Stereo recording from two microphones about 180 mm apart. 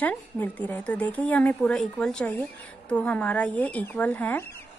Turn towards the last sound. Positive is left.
turn(degrees=10)  # may be behind; listen again after turning